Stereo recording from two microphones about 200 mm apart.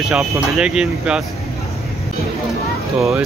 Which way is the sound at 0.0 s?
Centre (ahead or behind).